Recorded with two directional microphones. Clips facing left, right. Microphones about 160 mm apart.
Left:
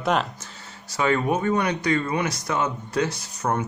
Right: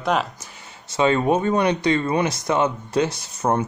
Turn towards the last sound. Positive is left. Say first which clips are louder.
# right 4 dB
turn(degrees=-25)  # may be behind; listen again after turning